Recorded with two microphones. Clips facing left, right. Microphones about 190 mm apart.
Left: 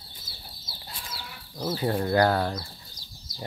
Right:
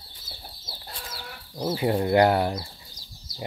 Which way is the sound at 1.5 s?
15° right (ahead or behind).